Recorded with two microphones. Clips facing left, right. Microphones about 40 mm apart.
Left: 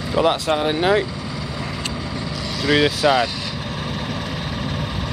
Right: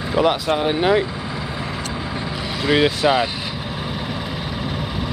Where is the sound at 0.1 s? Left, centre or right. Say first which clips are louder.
Even; centre.